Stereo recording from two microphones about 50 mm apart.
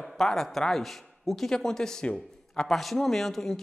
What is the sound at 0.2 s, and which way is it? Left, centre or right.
A man's voice, centre.